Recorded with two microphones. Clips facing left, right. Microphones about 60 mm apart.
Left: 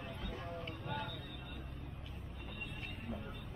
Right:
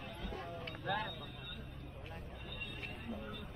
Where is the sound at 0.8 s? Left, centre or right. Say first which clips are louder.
Right 6 dB; right.